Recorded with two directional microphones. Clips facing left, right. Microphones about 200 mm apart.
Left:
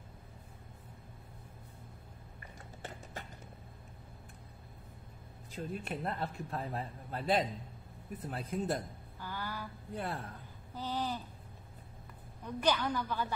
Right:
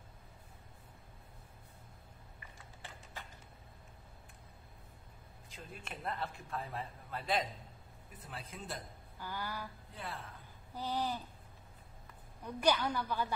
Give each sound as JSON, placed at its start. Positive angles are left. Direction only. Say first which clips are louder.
{"t": 2.4, "sound": "a sound", "louder": "left 7 dB", "side_deg": 45}
{"t": 5.6, "sound": "a man's voice", "louder": "left 9 dB", "side_deg": 40}
{"t": 9.2, "sound": "a woman's voice", "louder": "left 1 dB", "side_deg": -15}
{"t": 10.0, "sound": "speech", "louder": "left 4 dB", "side_deg": 45}
{"t": 10.7, "sound": "a woman's voice", "louder": "even", "side_deg": -10}
{"t": 12.4, "sound": "a woman's voice", "louder": "even", "side_deg": -10}